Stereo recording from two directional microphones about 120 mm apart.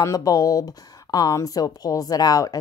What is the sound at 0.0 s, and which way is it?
A woman's voice, 30° left (ahead or behind).